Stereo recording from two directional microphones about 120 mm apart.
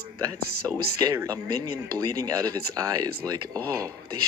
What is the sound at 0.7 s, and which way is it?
Speech, 25° right (ahead or behind).